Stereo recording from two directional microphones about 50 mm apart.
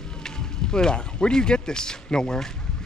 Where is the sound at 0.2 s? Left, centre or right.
Centre.